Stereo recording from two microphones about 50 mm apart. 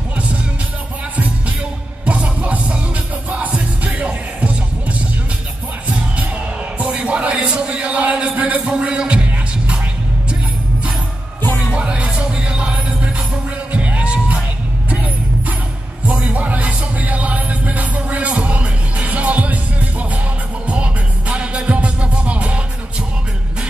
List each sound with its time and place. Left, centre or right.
2.0 s music: right
5.9 s music: right
11.7 s music: right
16.2 s music: right